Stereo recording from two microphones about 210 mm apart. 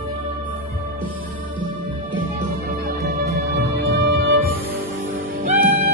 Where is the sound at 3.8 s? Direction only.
45° right (ahead or behind).